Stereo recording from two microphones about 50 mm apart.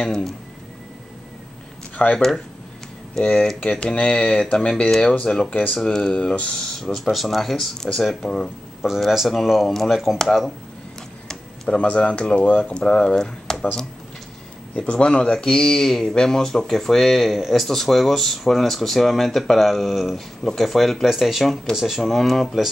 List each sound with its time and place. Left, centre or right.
0.0 s speech: centre
2.1 s speech: centre
5.5 s speech: left
5.9 s speech: centre
9.1 s speech: centre
11.2 s speech: centre
14.8 s speech: left; by 22.6 s centre